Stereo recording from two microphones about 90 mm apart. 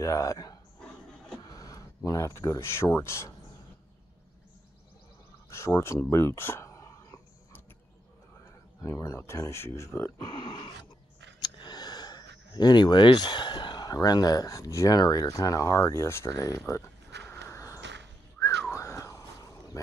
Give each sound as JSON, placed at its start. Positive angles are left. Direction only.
{"t": 0.0, "sound": "speech", "side_deg": 40}
{"t": 5.5, "sound": "speech", "side_deg": 30}
{"t": 8.8, "sound": "speech", "side_deg": 35}
{"t": 10.1, "sound": "speech", "side_deg": 55}
{"t": 18.6, "sound": "a sound", "side_deg": 30}